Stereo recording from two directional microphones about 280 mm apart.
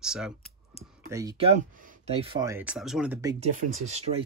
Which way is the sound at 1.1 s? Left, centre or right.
Centre.